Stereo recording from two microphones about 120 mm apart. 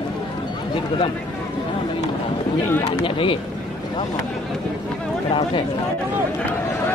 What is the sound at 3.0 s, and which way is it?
Speech, 45° left (ahead or behind).